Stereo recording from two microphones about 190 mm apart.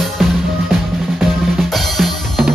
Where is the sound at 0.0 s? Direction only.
Centre (ahead or behind).